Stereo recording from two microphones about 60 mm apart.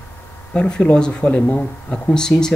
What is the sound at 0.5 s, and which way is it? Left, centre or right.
Speech, centre.